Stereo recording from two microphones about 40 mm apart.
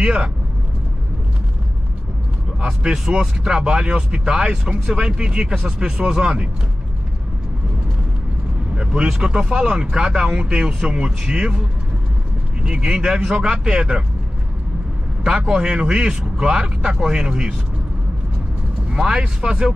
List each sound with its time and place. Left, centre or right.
0.0 s speech: right
2.6 s speech: centre; by 6.1 s right
6.1 s speech: centre
8.7 s speech: right
12.8 s speech: centre
15.2 s speech: centre
18.9 s speech: centre